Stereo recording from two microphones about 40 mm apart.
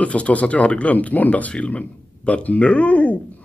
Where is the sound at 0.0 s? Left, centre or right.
Left.